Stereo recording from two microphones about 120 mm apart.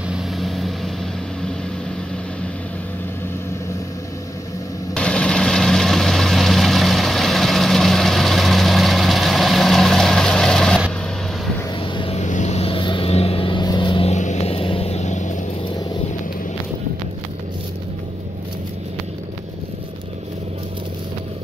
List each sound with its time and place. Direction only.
0.1 s vehicle: centre (ahead or behind)
4.9 s vehicle: 10° left (ahead or behind)
11.8 s a sound: 50° left (ahead or behind)
12.2 s vehicle: 80° left; by 14.0 s 40° left (ahead or behind)
14.0 s vehicle: 75° left (ahead or behind)